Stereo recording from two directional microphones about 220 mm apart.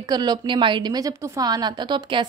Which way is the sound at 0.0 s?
20° right (ahead or behind).